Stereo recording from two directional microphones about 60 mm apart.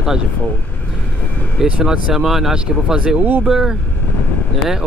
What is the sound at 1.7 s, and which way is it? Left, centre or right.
Speech, centre.